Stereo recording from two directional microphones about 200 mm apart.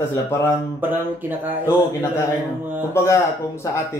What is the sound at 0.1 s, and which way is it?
Speech, 15° left (ahead or behind).